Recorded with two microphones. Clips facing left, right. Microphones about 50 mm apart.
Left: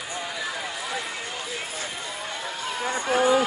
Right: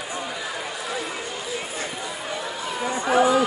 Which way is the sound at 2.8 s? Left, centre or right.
Right.